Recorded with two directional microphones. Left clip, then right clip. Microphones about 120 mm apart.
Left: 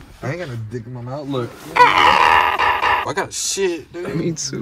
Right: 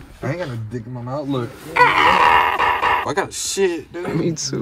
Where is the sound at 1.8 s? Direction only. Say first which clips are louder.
Left 2 dB; 20° left (ahead or behind).